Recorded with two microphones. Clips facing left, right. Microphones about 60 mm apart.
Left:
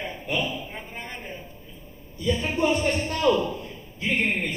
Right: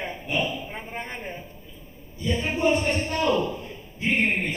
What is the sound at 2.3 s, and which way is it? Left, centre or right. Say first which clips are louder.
Speech: right 1 dB; right.